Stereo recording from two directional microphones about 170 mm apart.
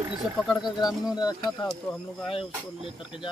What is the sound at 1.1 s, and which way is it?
Speech, 25° left (ahead or behind).